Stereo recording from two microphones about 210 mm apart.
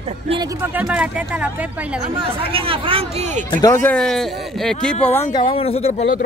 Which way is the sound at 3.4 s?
15° left (ahead or behind).